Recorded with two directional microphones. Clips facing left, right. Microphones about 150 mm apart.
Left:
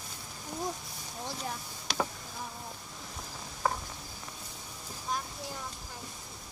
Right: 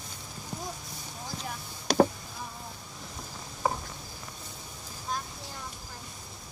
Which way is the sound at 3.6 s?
10° right (ahead or behind).